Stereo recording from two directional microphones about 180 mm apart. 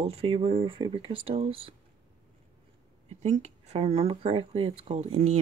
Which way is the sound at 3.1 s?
40° right (ahead or behind).